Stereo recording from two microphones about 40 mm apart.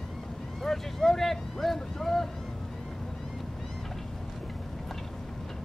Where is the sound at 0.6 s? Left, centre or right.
Centre.